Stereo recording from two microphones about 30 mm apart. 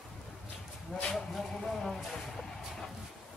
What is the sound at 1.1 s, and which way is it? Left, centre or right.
Speech, centre.